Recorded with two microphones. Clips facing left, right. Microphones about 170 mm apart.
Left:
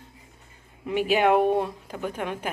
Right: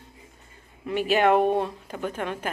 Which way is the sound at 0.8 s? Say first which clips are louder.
Even; 10° left (ahead or behind).